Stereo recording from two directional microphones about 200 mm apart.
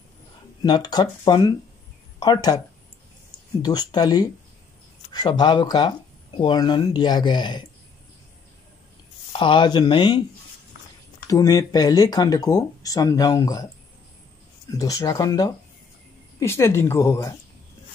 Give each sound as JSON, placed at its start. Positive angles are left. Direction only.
{"t": 0.6, "sound": "speech", "side_deg": 20}
{"t": 3.6, "sound": "speech", "side_deg": 20}
{"t": 9.3, "sound": "speech", "side_deg": 25}
{"t": 11.2, "sound": "speech", "side_deg": 20}
{"t": 14.7, "sound": "speech", "side_deg": 15}